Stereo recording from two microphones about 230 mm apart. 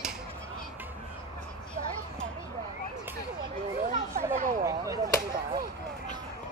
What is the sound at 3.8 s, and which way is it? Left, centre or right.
Children playing, right.